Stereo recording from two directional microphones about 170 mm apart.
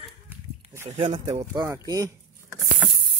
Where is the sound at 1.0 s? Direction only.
35° right (ahead or behind).